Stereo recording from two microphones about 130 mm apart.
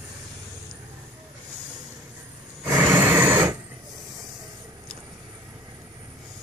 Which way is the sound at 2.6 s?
15° right (ahead or behind).